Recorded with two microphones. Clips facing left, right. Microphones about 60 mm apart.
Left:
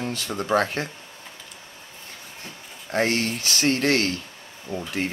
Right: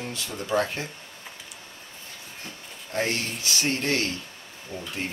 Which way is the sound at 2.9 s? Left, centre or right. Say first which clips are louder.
Left 5 dB; left.